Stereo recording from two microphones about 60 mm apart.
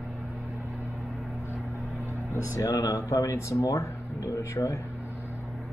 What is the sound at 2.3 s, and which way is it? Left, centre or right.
A man's voice, left.